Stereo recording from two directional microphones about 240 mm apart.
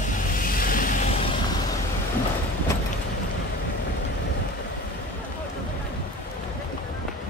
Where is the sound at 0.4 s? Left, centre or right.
Left.